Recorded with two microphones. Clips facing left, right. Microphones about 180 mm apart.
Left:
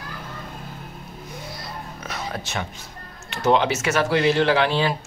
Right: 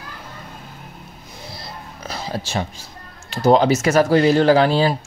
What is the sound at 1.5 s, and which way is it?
Speech, 30° right (ahead or behind).